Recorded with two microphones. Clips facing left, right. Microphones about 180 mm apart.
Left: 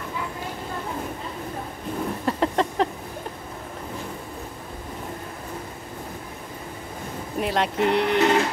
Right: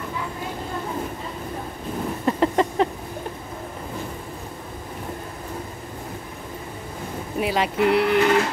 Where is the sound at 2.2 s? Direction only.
Centre (ahead or behind).